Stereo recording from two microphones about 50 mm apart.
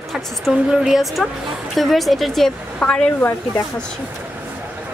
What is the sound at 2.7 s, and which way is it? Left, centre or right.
Speech, left.